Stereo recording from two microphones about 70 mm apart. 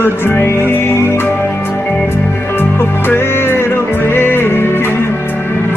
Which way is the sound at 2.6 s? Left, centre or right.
Left.